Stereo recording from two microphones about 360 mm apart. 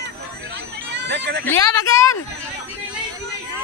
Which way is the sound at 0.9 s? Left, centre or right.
Right.